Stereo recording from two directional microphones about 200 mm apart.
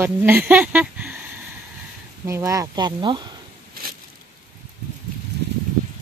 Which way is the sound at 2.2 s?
15° right (ahead or behind).